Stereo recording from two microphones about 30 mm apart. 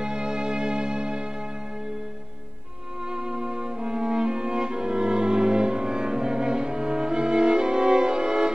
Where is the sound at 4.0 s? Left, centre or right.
Right.